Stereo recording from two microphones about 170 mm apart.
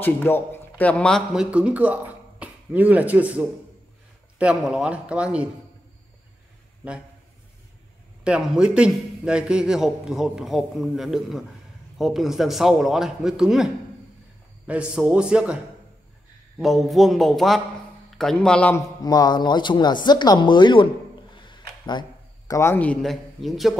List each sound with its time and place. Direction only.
0.0 s a man's voice: 10° left (ahead or behind); by 5.5 s 5° right (ahead or behind)
8.2 s a man's voice: 5° right (ahead or behind)
14.7 s a man's voice: 5° right (ahead or behind)
19.0 s speech: 25° left (ahead or behind)
21.4 s a sound: 25° left (ahead or behind)
22.5 s a man's voice: 15° left (ahead or behind); by 23.7 s centre (ahead or behind)